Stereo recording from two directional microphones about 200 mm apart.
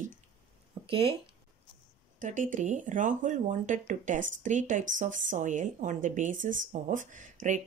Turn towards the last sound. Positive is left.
turn(degrees=-40)  # may be behind; listen again after turning